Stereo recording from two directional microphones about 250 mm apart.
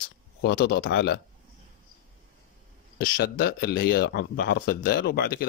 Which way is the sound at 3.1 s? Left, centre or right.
Left.